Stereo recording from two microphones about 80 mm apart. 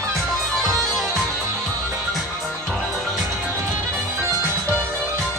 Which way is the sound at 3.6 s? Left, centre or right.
Right.